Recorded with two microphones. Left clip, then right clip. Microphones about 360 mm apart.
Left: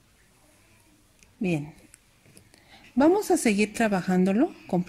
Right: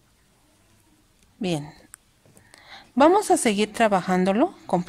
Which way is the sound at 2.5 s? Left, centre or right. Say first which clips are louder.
Right 1 dB; right.